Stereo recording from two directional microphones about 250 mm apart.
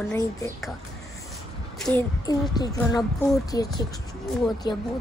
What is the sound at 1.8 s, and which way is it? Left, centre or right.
Child singing, centre.